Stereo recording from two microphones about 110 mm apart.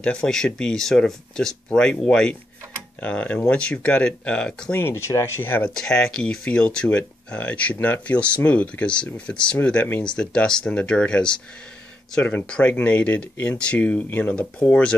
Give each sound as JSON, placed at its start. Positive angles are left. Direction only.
{"t": 0.0, "sound": "speech", "side_deg": 10}
{"t": 4.7, "sound": "speech", "side_deg": 25}
{"t": 5.8, "sound": "speech", "side_deg": 5}